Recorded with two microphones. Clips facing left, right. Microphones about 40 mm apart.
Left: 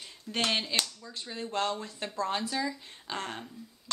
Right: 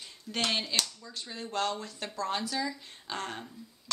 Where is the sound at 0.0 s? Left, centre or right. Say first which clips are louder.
Left 1 dB; centre.